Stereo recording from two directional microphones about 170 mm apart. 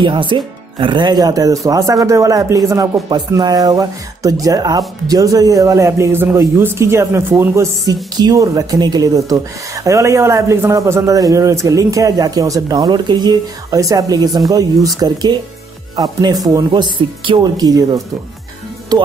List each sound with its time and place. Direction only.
0.0 s speech: 30° right (ahead or behind)